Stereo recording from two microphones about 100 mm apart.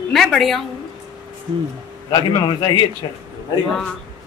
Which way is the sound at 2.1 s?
55° left (ahead or behind).